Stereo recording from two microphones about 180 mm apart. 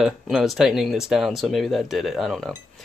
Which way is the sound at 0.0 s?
Centre (ahead or behind).